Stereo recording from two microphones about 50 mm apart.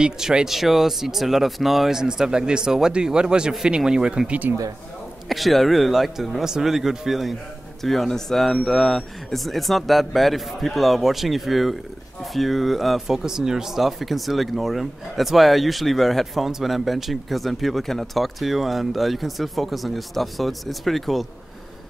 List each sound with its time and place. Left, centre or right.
0.0 s speech: centre
0.5 s speech: centre
5.3 s speech: centre